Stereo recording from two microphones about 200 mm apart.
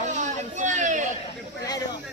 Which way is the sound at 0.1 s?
35° right (ahead or behind).